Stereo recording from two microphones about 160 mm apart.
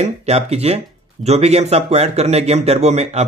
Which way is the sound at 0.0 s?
40° right (ahead or behind).